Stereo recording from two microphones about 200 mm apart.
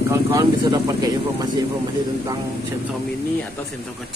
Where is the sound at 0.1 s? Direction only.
15° right (ahead or behind).